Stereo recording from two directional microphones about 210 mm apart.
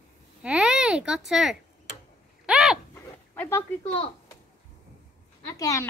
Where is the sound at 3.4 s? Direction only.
10° left (ahead or behind).